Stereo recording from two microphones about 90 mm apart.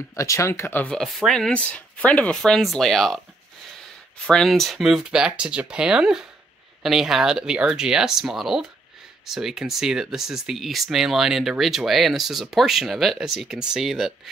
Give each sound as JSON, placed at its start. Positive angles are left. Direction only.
{"t": 0.1, "sound": "speech", "side_deg": 35}
{"t": 0.8, "sound": "speech", "side_deg": 5}
{"t": 1.5, "sound": "speech", "side_deg": 15}
{"t": 4.3, "sound": "speech", "side_deg": 5}